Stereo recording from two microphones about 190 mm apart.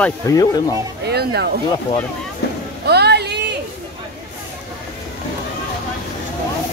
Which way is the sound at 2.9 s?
60° right (ahead or behind).